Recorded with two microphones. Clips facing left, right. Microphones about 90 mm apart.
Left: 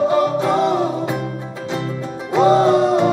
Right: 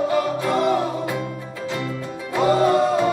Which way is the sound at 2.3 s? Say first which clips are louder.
Left 4 dB; 20° left (ahead or behind).